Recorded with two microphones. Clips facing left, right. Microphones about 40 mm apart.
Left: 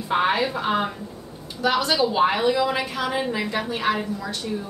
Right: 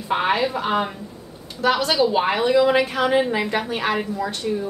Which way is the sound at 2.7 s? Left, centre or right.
Right.